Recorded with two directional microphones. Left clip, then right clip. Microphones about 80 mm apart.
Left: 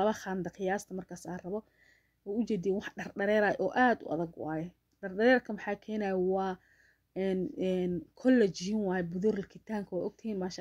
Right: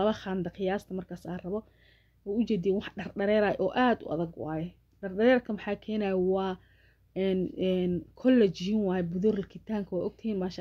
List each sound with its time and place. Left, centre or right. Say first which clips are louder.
0.0 s speech: right 2 dB; left